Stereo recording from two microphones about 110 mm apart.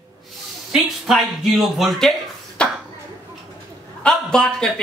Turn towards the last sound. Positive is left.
turn(degrees=5)  # may be behind; listen again after turning